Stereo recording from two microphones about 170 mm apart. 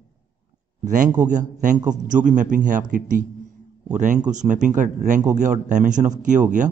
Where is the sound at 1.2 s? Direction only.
45° right (ahead or behind).